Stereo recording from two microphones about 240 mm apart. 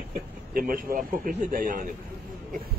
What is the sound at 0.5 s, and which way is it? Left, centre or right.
A man's voice, right.